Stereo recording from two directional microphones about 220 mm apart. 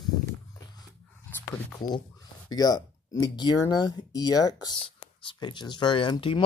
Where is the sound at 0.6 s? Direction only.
15° left (ahead or behind).